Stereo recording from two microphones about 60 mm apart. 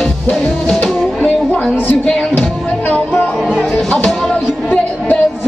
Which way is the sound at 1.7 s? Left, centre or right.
Left.